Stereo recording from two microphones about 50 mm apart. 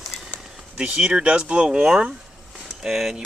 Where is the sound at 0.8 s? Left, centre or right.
Right.